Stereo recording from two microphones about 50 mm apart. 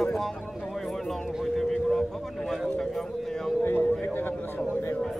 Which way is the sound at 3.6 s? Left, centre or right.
Left.